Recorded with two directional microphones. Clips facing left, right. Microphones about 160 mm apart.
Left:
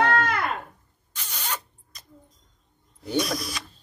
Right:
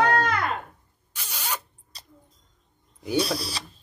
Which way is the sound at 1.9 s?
30° right (ahead or behind).